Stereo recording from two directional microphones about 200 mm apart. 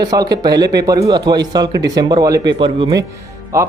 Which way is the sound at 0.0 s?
20° right (ahead or behind).